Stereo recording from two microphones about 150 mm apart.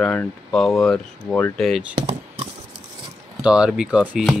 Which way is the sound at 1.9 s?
45° right (ahead or behind).